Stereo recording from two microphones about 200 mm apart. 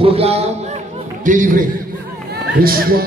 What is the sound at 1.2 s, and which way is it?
Speech, 40° right (ahead or behind).